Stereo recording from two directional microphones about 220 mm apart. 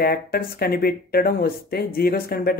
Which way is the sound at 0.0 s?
45° left (ahead or behind).